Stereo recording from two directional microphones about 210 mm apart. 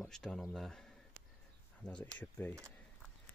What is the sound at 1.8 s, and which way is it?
Speech, 20° left (ahead or behind).